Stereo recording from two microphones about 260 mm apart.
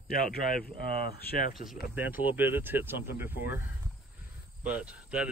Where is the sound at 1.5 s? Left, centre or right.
Centre.